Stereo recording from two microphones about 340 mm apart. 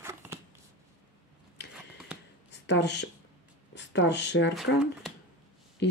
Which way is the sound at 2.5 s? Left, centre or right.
Left.